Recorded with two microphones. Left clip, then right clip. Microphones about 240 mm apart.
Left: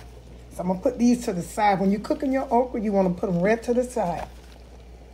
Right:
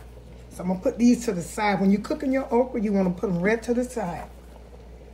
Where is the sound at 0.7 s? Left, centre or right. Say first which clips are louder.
Even; left.